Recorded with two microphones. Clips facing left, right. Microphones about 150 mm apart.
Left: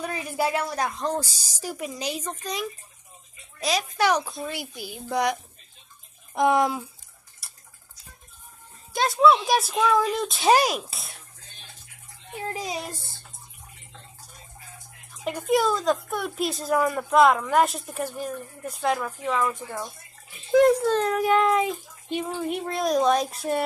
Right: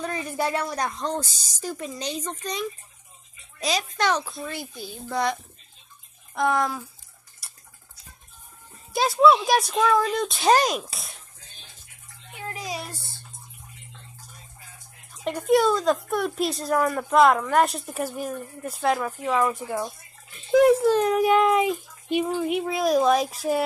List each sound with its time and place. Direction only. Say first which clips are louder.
0.0 s a woman's voice: even; 10° left (ahead or behind)
3.9 s a woman's voice: left 2 dB; 10° left (ahead or behind)
7.4 s tick-tock: right 1 dB; centre (ahead or behind)
8.9 s speech: right 1 dB; centre (ahead or behind)
12.4 s a sound: left 2 dB; 30° left (ahead or behind)
15.2 s a child's voice: right 3 dB; centre (ahead or behind)
22.4 s speech: right 3 dB; 5° right (ahead or behind)